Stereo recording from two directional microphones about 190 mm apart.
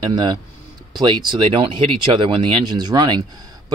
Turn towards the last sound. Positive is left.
turn(degrees=-20)  # may be behind; listen again after turning